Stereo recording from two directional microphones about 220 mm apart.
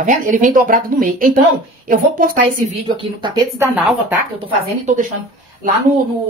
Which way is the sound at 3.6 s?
5° right (ahead or behind).